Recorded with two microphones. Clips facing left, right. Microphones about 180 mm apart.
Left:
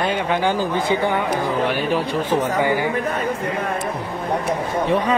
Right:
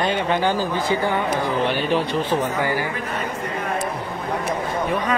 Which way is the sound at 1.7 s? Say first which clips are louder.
Even; 5° left (ahead or behind).